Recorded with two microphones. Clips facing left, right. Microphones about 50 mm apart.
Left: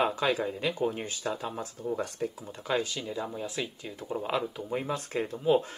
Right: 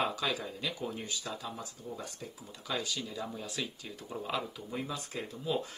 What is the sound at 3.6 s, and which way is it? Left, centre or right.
Speech, centre.